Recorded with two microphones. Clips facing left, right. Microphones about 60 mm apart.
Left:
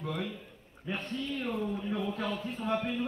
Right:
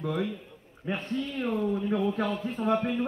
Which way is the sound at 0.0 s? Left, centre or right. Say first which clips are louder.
Right 6 dB; right.